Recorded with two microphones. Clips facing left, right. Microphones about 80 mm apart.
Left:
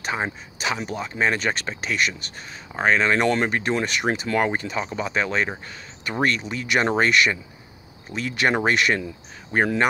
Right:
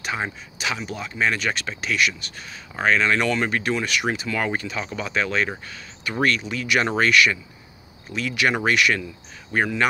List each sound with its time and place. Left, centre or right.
0.0 s speech: left